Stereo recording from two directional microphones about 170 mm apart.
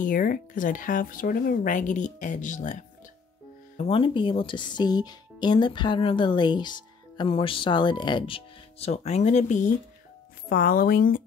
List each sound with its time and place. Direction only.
0.0 s speech: 55° left (ahead or behind)
3.7 s speech: 35° left (ahead or behind)
10.5 s a woman's voice: 55° left (ahead or behind)